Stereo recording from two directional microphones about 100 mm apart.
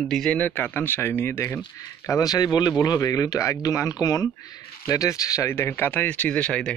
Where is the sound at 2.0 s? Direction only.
35° left (ahead or behind).